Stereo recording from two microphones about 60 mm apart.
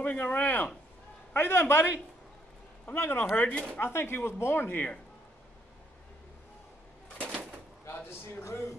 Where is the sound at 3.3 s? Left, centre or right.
Left.